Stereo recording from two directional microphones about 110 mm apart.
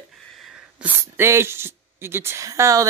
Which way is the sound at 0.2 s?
Centre (ahead or behind).